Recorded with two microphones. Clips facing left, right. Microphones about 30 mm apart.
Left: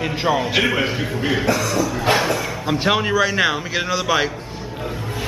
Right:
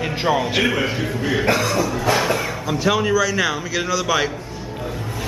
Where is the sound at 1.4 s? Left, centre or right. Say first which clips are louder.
Right 3 dB; right.